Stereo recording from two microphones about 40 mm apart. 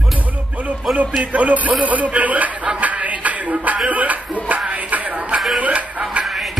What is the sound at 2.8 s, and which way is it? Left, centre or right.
Music, right.